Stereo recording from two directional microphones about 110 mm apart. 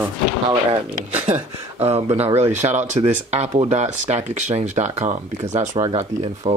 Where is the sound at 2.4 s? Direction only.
90° right.